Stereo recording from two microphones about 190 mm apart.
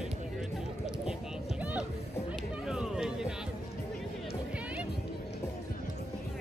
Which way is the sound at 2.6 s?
5° right (ahead or behind).